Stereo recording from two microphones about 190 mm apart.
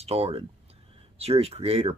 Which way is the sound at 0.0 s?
30° right (ahead or behind).